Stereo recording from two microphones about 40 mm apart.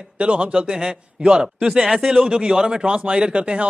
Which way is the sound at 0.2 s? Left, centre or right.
Right.